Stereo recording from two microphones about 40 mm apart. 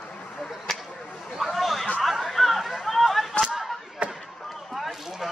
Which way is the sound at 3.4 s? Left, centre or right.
Centre.